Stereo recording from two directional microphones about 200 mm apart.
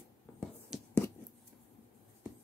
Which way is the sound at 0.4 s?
5° left (ahead or behind).